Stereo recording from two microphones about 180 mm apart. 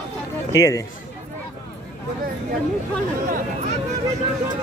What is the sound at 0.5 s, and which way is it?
Speech, 20° left (ahead or behind).